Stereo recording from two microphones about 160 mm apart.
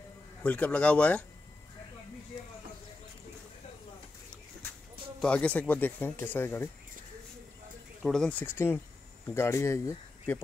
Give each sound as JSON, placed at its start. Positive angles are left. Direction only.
{"t": 0.4, "sound": "speech", "side_deg": 10}
{"t": 5.2, "sound": "speech", "side_deg": 5}
{"t": 8.0, "sound": "speech", "side_deg": 5}